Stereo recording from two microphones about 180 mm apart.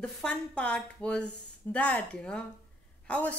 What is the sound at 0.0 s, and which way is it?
A woman's voice, 5° left (ahead or behind).